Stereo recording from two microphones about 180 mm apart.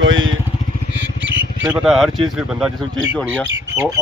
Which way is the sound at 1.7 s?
5° right (ahead or behind).